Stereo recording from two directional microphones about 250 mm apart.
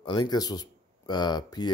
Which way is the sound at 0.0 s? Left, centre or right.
Centre.